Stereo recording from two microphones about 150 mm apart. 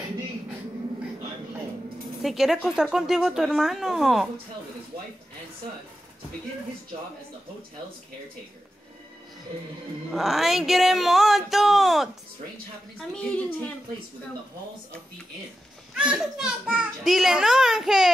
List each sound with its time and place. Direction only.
2.2 s a child's voice: centre (ahead or behind)
10.1 s a child's voice: centre (ahead or behind)
13.1 s a woman's voice: 5° left (ahead or behind)
16.0 s a child's voice: 5° right (ahead or behind)